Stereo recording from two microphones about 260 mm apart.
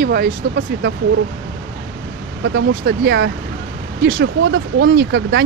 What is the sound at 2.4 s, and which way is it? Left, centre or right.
Speech, right.